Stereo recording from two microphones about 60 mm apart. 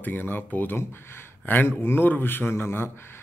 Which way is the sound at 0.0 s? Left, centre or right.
Left.